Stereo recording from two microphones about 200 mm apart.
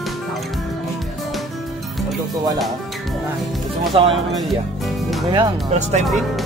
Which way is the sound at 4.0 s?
25° right (ahead or behind).